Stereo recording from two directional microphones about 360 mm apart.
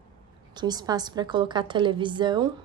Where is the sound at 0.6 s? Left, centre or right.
Centre.